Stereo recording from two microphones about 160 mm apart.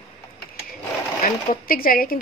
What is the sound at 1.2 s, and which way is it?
Speech, 65° left (ahead or behind).